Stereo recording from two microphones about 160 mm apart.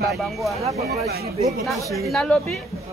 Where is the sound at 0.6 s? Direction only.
40° right (ahead or behind).